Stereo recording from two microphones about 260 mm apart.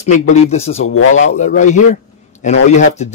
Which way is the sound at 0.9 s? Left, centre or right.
Left.